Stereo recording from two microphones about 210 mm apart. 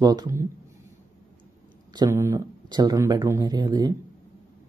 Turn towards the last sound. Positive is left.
turn(degrees=-20)  # may be behind; listen again after turning